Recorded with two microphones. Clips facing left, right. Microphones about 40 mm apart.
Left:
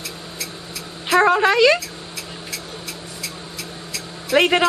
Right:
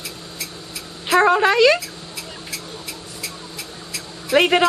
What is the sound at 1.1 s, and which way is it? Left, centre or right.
Speech, centre.